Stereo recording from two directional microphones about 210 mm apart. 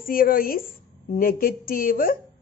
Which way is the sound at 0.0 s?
40° left (ahead or behind).